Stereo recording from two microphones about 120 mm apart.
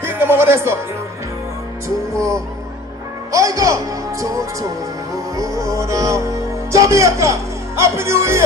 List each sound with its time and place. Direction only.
0.0 s speech: 20° right (ahead or behind)
2.1 s music: 25° right (ahead or behind)